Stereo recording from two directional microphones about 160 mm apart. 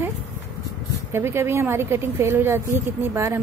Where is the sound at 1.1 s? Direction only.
15° right (ahead or behind).